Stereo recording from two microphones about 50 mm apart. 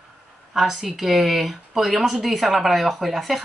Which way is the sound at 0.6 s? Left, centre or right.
Centre.